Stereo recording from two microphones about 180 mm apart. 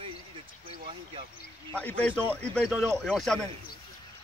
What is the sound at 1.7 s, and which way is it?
Speech, 10° left (ahead or behind).